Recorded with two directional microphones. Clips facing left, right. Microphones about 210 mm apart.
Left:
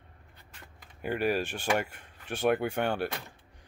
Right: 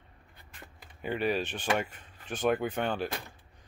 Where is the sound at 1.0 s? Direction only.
10° left (ahead or behind).